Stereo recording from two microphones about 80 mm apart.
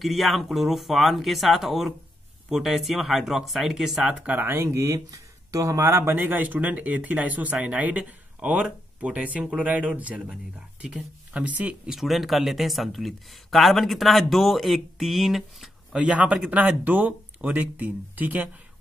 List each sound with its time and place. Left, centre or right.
0.0 s speech: centre
4.3 s speech: right
6.1 s speech: right
10.8 s speech: centre
11.3 s speech: centre
11.9 s speech: centre
16.0 s speech: centre